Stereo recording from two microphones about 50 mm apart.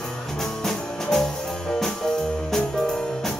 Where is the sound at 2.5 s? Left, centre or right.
Centre.